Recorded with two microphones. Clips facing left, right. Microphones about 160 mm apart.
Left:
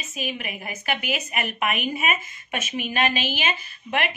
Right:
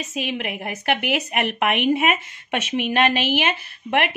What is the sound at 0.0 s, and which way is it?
A woman's voice, 80° right.